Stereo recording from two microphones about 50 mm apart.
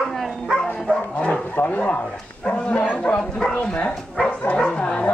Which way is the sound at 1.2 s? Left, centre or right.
Left.